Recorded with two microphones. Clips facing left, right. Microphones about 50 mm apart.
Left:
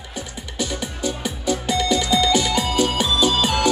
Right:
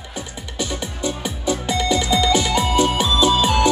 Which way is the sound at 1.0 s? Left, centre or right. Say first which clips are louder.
Right 1 dB; right.